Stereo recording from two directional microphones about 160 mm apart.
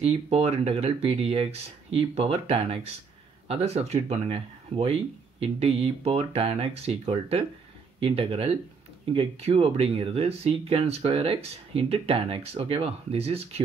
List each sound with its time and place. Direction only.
0.0 s speech: 40° right (ahead or behind)